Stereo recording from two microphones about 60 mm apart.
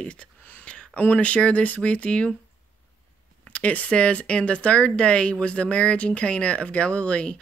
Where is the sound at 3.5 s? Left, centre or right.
Left.